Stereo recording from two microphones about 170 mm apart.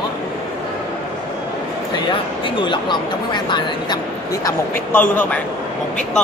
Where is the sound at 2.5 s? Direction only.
25° left (ahead or behind).